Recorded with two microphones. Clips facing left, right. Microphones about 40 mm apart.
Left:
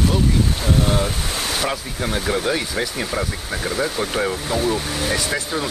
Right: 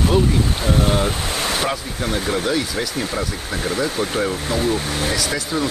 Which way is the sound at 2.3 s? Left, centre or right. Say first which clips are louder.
Even; centre.